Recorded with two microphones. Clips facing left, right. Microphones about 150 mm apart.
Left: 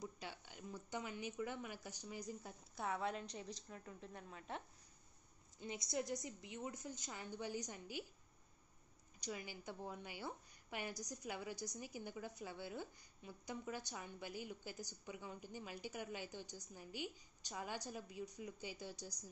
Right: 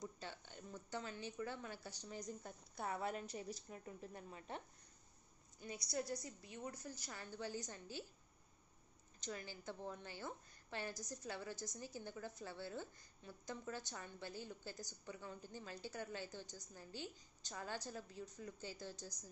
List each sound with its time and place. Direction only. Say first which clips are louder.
0.0 s a woman's voice: even; 10° left (ahead or behind)
5.6 s a woman's voice: left 1 dB; 20° left (ahead or behind)
9.2 s a woman's voice: left 1 dB; 10° left (ahead or behind)